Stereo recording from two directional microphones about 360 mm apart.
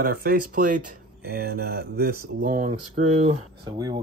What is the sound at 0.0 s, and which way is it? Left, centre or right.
Speech, right.